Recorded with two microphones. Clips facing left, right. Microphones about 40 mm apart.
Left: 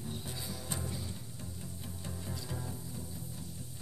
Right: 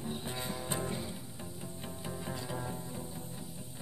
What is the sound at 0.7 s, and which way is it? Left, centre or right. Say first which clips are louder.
Music: right 4 dB; right.